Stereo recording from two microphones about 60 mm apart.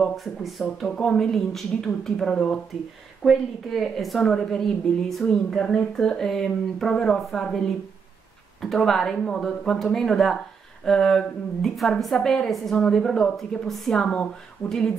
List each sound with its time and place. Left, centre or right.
0.0 s speech: centre
0.8 s speech: centre
14.0 s speech: centre